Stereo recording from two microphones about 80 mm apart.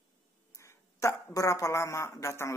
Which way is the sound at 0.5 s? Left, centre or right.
Left.